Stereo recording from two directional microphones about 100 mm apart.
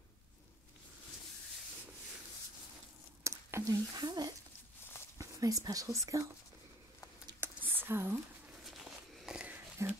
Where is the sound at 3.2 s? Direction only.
35° right (ahead or behind).